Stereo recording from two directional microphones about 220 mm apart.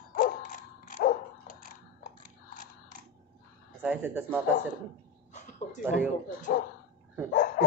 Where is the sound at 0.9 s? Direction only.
40° left (ahead or behind).